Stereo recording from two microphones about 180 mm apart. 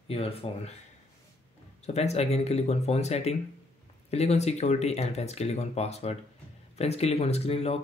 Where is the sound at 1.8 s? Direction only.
35° left (ahead or behind).